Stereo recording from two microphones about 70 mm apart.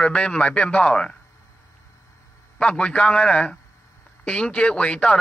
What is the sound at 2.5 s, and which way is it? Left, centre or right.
Speech, centre.